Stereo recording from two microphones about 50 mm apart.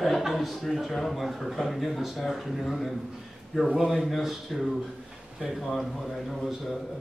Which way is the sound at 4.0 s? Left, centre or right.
Centre.